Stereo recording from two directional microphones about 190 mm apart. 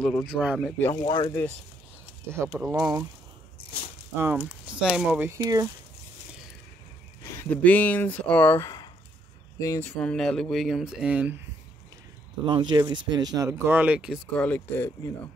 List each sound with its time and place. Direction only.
0.0 s speech: centre (ahead or behind)
1.0 s speech: 20° left (ahead or behind)
2.2 s speech: 15° right (ahead or behind)
4.2 s speech: 10° right (ahead or behind)
7.2 s speech: 10° left (ahead or behind)
9.8 s speech: 5° left (ahead or behind)
12.4 s speech: 25° right (ahead or behind); by 14.2 s 5° right (ahead or behind)
14.3 s speech: 10° left (ahead or behind)